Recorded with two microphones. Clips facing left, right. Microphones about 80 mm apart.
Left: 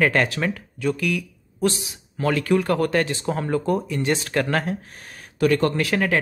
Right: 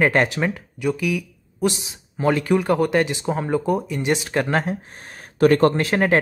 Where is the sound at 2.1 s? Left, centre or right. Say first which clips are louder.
Right 1 dB; centre.